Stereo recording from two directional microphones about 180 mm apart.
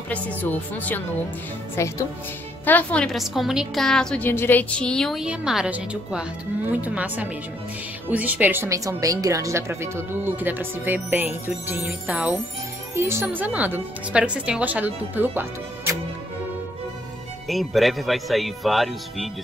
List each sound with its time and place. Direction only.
0.1 s a woman's voice: 10° left (ahead or behind); by 16.0 s 10° right (ahead or behind)
17.5 s a woman's voice: centre (ahead or behind)